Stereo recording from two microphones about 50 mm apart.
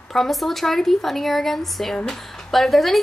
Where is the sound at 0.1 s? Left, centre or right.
Centre.